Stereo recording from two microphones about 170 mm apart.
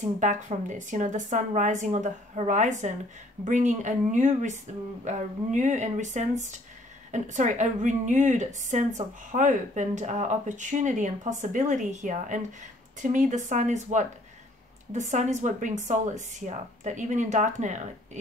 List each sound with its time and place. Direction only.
0.0 s a woman's voice: 45° right (ahead or behind)